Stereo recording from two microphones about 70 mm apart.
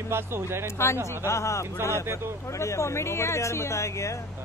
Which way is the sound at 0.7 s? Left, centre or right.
Left.